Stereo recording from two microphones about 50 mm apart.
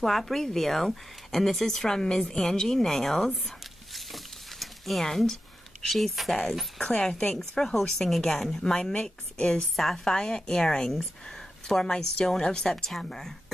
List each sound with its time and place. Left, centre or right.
0.0 s speech: centre
6.8 s a woman's voice: centre